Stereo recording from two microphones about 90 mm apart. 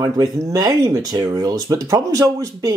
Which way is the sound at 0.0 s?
45° right (ahead or behind).